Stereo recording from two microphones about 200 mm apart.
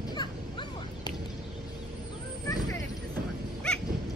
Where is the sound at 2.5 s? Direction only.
20° left (ahead or behind).